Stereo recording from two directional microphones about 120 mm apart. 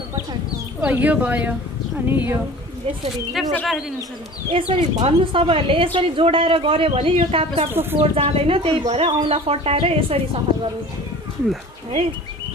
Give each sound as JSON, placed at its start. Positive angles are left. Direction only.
{"t": 0.8, "sound": "a woman's voice", "side_deg": -15}
{"t": 3.4, "sound": "speech", "side_deg": 0}
{"t": 4.5, "sound": "speech", "side_deg": -45}
{"t": 7.7, "sound": "speech", "side_deg": -15}
{"t": 8.0, "sound": "speech", "side_deg": -55}
{"t": 9.3, "sound": "speech", "side_deg": -55}